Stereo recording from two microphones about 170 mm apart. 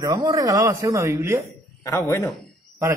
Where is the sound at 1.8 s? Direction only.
20° left (ahead or behind).